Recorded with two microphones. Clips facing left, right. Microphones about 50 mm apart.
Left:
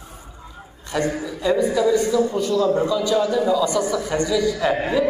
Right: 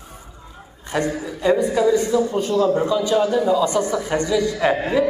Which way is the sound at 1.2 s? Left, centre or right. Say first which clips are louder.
Right 3 dB; right.